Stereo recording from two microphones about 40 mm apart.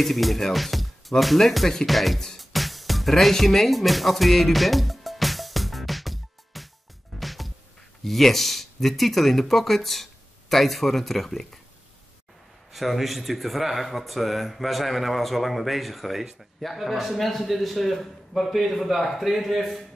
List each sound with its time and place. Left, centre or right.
0.0 s speech: centre
2.2 s music: centre
8.0 s speech: centre
12.7 s speech: centre